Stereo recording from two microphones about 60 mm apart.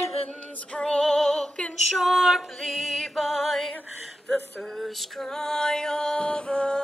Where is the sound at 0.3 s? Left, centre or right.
Centre.